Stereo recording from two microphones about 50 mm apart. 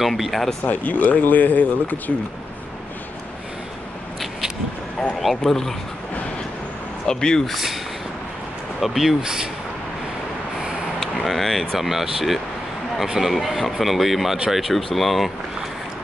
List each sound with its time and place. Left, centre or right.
0.0 s speech: centre
0.7 s speech: left
5.2 s speech: centre
7.1 s speech: centre
7.4 s speech: centre
8.8 s speech: centre
11.2 s speech: centre